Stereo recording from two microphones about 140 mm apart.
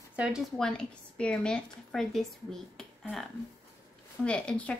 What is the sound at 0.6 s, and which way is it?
A woman's voice, 5° left (ahead or behind).